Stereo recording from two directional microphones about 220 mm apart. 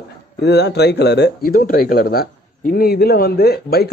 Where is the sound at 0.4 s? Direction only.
50° left (ahead or behind).